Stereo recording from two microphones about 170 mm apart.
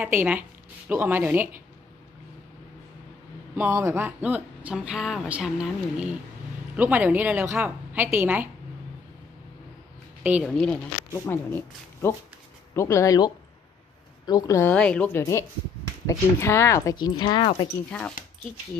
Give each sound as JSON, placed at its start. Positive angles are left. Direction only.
{"t": 0.0, "sound": "a woman's voice", "side_deg": -10}
{"t": 3.5, "sound": "speech", "side_deg": -15}
{"t": 10.4, "sound": "a woman's voice", "side_deg": 5}
{"t": 17.8, "sound": "a woman's voice", "side_deg": 5}